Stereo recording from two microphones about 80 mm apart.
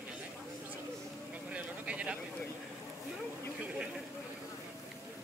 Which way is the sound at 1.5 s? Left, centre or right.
Centre.